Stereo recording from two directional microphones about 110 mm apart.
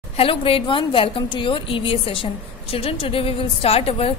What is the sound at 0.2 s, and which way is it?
A woman's voice, 55° left (ahead or behind).